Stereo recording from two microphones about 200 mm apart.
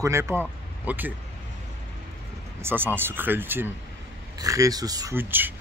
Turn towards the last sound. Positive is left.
turn(degrees=-10)  # may be behind; listen again after turning